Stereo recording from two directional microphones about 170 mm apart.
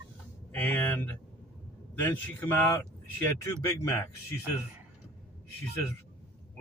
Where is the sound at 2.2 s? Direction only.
10° left (ahead or behind).